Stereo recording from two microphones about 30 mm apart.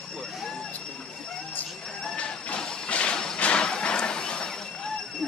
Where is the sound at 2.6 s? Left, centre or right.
Left.